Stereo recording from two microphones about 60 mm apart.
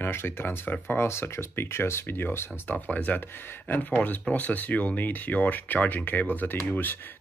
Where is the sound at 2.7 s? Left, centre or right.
Left.